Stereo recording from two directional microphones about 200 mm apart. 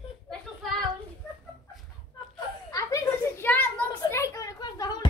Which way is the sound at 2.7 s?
15° left (ahead or behind).